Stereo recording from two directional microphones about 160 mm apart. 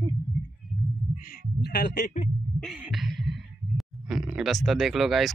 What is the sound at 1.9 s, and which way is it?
Speech, 50° left (ahead or behind).